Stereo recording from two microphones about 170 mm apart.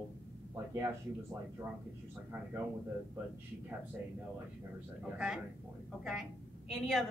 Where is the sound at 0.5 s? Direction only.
15° right (ahead or behind).